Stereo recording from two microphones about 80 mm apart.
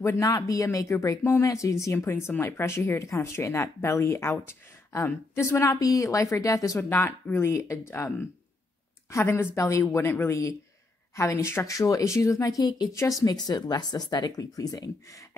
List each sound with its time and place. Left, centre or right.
0.0 s speech: left
6.8 s speech: left
12.9 s speech: left
13.5 s speech: left